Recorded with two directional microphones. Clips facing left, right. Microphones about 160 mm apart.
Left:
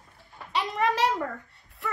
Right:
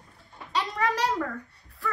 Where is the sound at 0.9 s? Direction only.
25° left (ahead or behind).